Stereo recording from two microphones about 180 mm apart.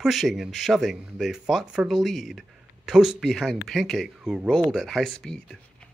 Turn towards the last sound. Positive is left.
turn(degrees=5)  # may be behind; listen again after turning